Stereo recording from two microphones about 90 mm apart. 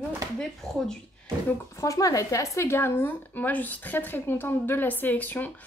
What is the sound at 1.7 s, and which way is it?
Speech, 35° left (ahead or behind).